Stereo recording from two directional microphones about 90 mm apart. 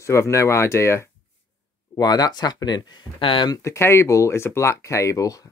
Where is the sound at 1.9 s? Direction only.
45° left (ahead or behind).